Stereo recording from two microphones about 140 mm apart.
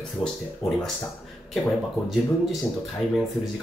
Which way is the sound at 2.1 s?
Centre (ahead or behind).